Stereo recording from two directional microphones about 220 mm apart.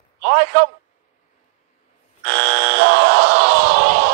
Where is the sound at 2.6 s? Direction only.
50° right (ahead or behind).